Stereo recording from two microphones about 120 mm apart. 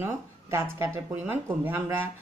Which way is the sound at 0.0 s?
20° right (ahead or behind).